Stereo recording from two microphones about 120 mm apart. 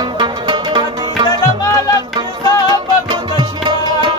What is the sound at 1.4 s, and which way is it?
Music, 30° left (ahead or behind).